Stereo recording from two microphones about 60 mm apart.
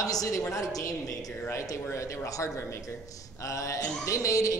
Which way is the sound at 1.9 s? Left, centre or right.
Left.